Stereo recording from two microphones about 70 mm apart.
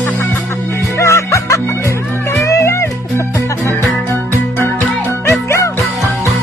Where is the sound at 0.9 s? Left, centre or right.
Left.